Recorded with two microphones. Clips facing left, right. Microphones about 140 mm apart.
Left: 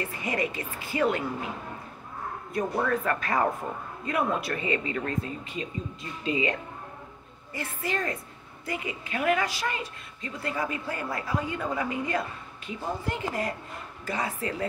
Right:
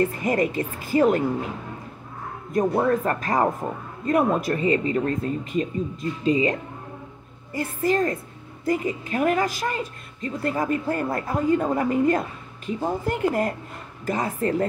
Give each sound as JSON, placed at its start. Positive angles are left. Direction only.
{"t": 0.0, "sound": "speech", "side_deg": -45}
{"t": 2.5, "sound": "speech", "side_deg": -45}
{"t": 7.5, "sound": "speech", "side_deg": -45}